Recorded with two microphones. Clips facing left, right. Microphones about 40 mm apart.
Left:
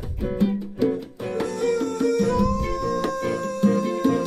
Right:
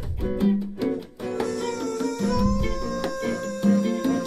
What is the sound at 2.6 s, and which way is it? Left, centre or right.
Music, centre.